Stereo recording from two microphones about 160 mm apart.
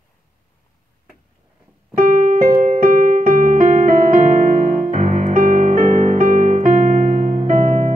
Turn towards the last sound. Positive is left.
turn(degrees=-55)  # may be behind; listen again after turning